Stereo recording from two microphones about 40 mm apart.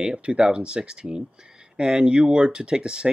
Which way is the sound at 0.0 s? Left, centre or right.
Right.